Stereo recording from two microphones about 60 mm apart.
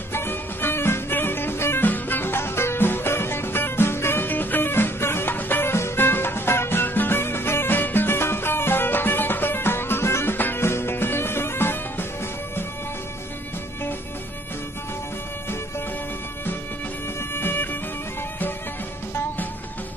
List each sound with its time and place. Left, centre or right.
0.1 s music: left
17.4 s music: left